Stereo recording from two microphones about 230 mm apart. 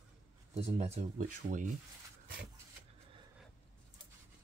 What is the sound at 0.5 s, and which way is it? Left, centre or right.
Speech, right.